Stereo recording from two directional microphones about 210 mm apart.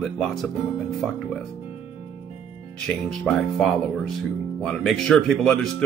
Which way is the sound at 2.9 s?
5° left (ahead or behind).